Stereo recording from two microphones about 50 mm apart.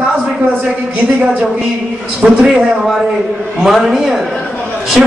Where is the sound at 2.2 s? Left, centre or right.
Right.